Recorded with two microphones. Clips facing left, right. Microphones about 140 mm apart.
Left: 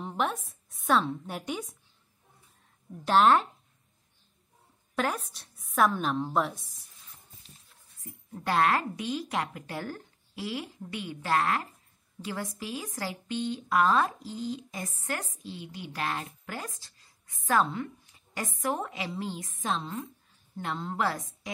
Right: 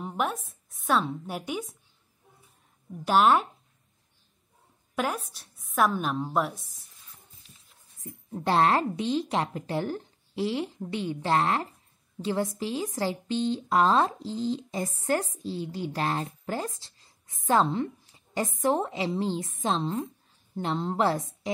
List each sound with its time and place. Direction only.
0.0 s a woman's voice: 5° right (ahead or behind)
3.1 s a woman's voice: 5° right (ahead or behind)
4.9 s a woman's voice: 5° right (ahead or behind)
8.0 s a woman's voice: 30° right (ahead or behind)